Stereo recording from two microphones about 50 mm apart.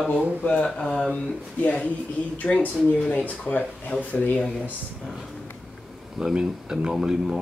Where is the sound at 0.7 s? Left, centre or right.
Centre.